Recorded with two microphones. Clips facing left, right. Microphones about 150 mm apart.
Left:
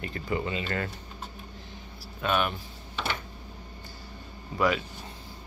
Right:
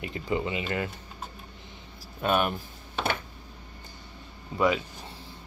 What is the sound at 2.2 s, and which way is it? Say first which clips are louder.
Speech: right 2 dB; 40° right (ahead or behind).